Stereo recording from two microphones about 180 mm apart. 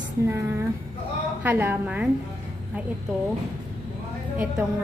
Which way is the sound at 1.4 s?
10° right (ahead or behind).